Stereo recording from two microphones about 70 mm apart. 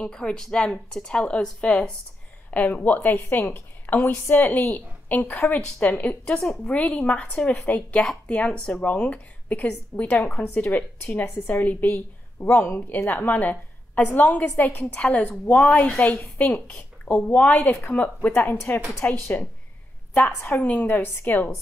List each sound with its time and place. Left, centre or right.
0.0 s a woman's voice: centre
2.5 s a woman's voice: left
20.2 s a woman's voice: left
20.6 s a woman's voice: left